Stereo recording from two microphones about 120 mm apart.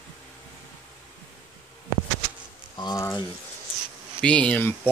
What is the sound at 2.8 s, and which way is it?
Speech, 35° left (ahead or behind).